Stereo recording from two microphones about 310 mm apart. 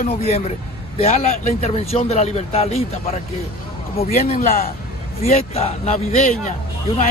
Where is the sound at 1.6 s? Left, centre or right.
Centre.